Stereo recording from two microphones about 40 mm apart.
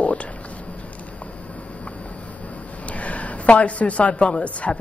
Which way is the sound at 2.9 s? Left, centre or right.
Left.